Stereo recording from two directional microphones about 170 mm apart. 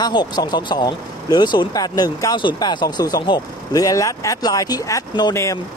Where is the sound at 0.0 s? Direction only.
25° left (ahead or behind).